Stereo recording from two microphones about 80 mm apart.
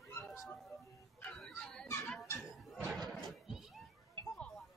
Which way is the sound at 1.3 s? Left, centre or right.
Centre.